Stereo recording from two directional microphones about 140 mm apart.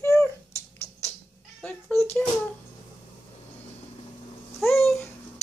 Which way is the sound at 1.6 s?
15° left (ahead or behind).